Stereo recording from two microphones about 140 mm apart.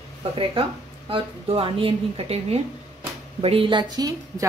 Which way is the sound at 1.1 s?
40° right (ahead or behind).